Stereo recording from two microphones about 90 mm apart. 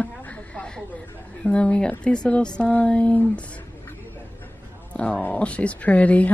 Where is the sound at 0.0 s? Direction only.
15° left (ahead or behind).